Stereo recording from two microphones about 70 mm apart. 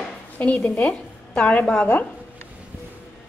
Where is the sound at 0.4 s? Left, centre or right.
Centre.